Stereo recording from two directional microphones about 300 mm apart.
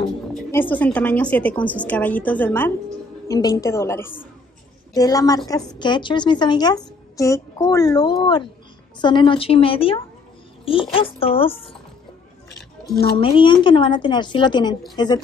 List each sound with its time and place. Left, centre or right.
0.3 s a woman's voice: centre
13.2 s speech: centre